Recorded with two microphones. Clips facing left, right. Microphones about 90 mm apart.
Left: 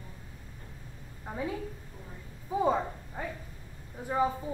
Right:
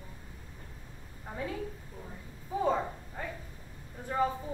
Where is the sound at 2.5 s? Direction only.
15° left (ahead or behind).